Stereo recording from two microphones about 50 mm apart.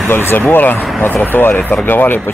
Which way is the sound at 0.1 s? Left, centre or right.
Left.